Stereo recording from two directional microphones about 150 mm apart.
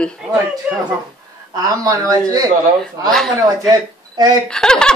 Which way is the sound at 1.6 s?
25° right (ahead or behind).